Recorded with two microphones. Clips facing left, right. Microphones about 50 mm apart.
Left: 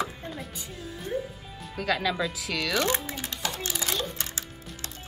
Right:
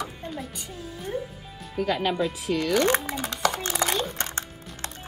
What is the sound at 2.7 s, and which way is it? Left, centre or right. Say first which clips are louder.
A child's voice: right 5 dB; right.